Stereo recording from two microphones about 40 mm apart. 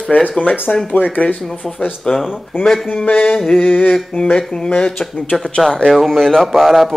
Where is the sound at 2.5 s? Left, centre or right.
Left.